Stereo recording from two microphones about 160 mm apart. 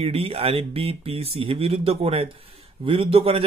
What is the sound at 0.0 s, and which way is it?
A man's voice, 40° right (ahead or behind).